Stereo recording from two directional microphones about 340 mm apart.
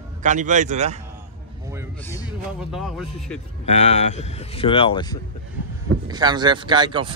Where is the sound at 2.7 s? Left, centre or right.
Centre.